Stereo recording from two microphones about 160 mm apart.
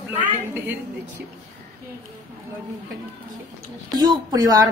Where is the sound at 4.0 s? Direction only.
25° right (ahead or behind).